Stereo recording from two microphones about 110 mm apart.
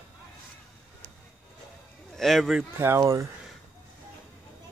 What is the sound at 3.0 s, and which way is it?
Speech, 30° right (ahead or behind).